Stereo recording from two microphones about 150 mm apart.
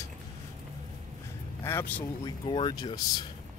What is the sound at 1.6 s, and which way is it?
Speech, 15° left (ahead or behind).